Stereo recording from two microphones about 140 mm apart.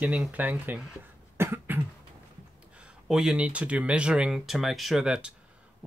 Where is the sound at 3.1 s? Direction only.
5° right (ahead or behind).